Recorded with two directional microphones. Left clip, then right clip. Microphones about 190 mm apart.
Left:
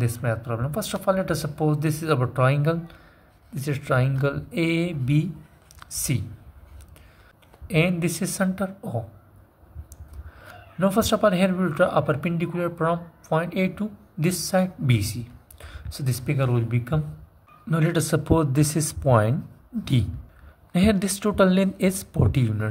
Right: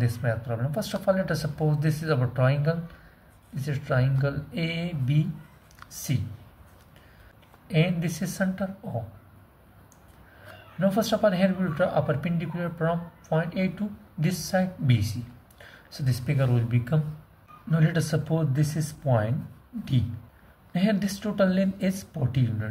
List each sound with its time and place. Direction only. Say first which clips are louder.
0.0 s speech: left 2 dB; 30° left (ahead or behind)
7.6 s speech: left 4 dB; 35° left (ahead or behind)
10.8 s speech: left 3 dB; 35° left (ahead or behind)
17.6 s speech: left 4 dB; 35° left (ahead or behind)